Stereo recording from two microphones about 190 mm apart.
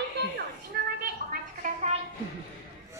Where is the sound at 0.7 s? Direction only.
55° right (ahead or behind).